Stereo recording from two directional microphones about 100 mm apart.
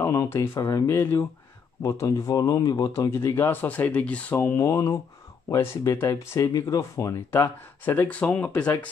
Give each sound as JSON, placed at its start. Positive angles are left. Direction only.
{"t": 0.0, "sound": "speech", "side_deg": 30}
{"t": 2.9, "sound": "speech", "side_deg": 30}